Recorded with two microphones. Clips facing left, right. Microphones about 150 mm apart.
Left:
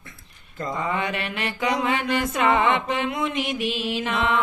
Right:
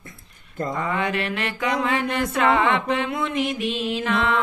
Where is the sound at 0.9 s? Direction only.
Centre (ahead or behind).